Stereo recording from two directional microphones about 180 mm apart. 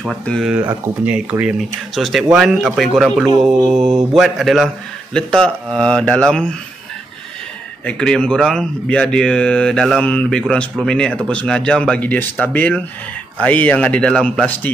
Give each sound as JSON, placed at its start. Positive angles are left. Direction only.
{"t": 0.2, "sound": "speech", "side_deg": 5}
{"t": 3.3, "sound": "mantra", "side_deg": -20}
{"t": 4.1, "sound": "speech", "side_deg": 0}
{"t": 7.8, "sound": "speech", "side_deg": 5}